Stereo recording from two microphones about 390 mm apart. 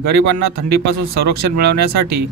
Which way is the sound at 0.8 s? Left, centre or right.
Right.